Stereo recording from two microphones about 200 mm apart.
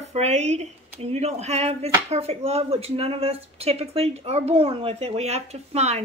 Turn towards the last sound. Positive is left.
turn(degrees=-30)  # may be behind; listen again after turning